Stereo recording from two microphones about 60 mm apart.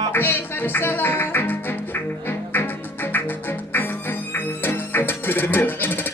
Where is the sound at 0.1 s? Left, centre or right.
Left.